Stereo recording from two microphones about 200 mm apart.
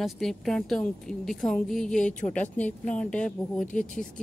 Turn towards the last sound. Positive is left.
turn(degrees=40)  # may be behind; listen again after turning